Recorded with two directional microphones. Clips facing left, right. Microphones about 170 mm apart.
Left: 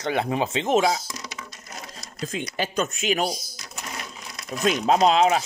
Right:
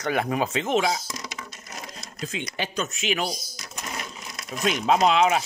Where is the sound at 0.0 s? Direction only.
25° left (ahead or behind).